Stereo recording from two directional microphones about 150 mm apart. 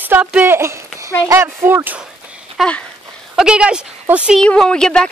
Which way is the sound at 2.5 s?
5° left (ahead or behind).